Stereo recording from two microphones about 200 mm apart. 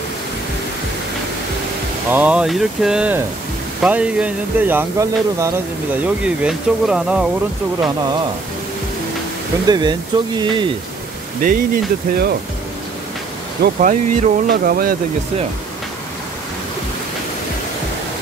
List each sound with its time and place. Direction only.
2.0 s speech: 10° right (ahead or behind)
7.8 s speech: 20° right (ahead or behind)
9.7 s speech: 20° right (ahead or behind)
11.4 s speech: 45° right (ahead or behind)
13.6 s speech: 40° right (ahead or behind)